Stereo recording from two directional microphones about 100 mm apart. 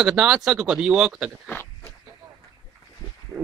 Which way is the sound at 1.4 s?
20° left (ahead or behind).